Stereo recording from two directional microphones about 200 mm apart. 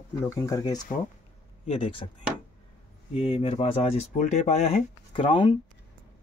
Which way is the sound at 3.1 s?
30° left (ahead or behind).